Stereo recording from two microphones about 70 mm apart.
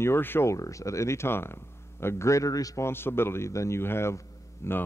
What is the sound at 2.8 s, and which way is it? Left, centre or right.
A man's voice, left.